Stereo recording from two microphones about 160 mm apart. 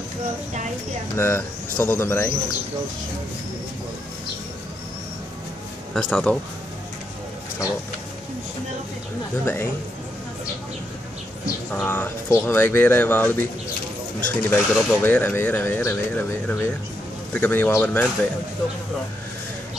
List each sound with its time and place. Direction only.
1.1 s speech: 15° left (ahead or behind)
5.9 s speech: 5° left (ahead or behind)
9.4 s speech: 15° left (ahead or behind)
11.4 s speech: 10° left (ahead or behind)